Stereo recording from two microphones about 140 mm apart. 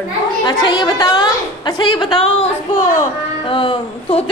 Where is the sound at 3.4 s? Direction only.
40° left (ahead or behind).